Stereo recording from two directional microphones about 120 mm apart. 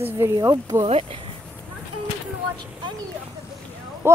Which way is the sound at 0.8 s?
60° right (ahead or behind).